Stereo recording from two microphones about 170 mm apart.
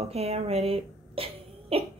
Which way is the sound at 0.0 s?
35° right (ahead or behind).